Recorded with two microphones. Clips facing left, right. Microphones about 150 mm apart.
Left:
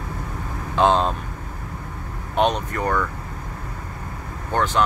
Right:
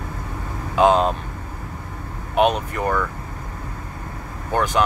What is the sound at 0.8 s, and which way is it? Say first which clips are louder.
Speech: right 2 dB; 10° right (ahead or behind).